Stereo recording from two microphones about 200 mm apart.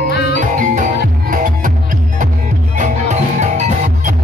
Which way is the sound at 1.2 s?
40° right (ahead or behind).